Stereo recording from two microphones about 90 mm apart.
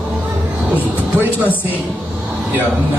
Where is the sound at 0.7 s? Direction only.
20° right (ahead or behind).